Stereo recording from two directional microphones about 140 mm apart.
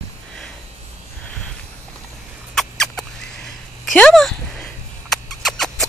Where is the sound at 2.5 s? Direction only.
5° left (ahead or behind).